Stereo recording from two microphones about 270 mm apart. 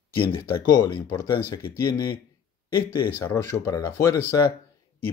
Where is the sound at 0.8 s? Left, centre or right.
Centre.